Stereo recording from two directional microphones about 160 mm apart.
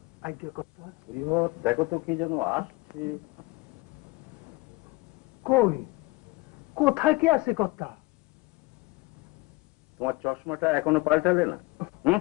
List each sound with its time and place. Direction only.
0.2 s speech: 10° right (ahead or behind)
1.5 s speech: 10° right (ahead or behind)
5.4 s speech: 5° right (ahead or behind)
6.7 s speech: 5° right (ahead or behind)
9.9 s a man's voice: 10° right (ahead or behind)